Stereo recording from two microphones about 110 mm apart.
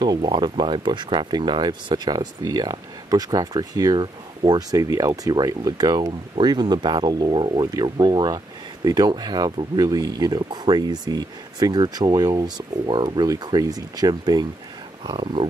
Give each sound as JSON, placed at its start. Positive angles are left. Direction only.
{"t": 0.0, "sound": "speech", "side_deg": -45}
{"t": 7.6, "sound": "speech", "side_deg": -35}
{"t": 15.0, "sound": "speech", "side_deg": -50}